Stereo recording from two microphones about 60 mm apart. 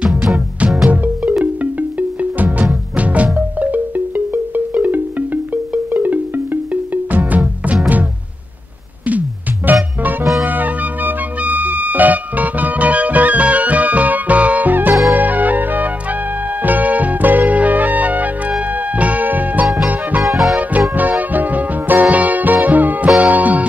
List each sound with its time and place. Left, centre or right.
0.0 s music: centre
0.8 s music: right
9.7 s music: right
20.2 s music: centre
20.9 s music: right